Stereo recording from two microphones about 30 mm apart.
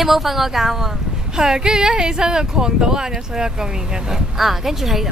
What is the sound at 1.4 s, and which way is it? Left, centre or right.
Speech, right.